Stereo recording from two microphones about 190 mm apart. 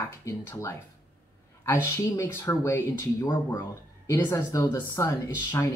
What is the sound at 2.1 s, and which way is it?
Speech, 15° left (ahead or behind).